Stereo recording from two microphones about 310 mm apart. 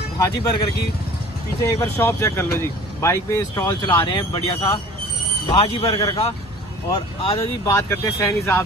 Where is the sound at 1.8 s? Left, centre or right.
Centre.